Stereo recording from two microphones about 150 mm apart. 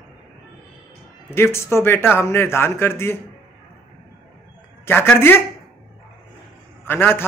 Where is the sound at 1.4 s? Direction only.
15° left (ahead or behind).